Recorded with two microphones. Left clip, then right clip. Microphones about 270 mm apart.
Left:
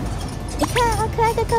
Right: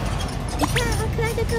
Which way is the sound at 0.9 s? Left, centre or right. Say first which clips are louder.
Left 7 dB; left.